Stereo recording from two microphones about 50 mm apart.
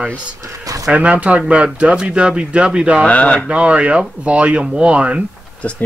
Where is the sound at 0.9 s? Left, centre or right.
Right.